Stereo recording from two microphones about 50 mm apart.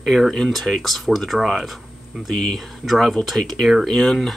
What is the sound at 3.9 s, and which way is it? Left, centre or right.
Speech, centre.